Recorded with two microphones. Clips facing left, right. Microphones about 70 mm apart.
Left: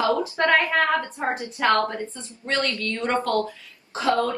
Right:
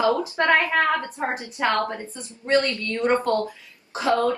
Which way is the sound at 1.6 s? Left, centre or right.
Centre.